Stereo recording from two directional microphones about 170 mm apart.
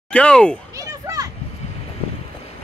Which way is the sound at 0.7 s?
20° right (ahead or behind).